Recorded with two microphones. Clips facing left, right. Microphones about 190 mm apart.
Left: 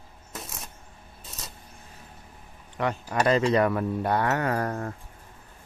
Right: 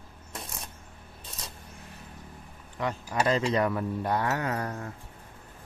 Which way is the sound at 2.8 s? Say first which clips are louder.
Left 3 dB; 65° left (ahead or behind).